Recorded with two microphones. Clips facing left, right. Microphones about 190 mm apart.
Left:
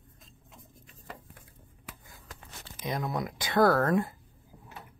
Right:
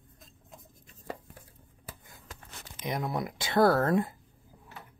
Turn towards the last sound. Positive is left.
turn(degrees=-20)  # may be behind; listen again after turning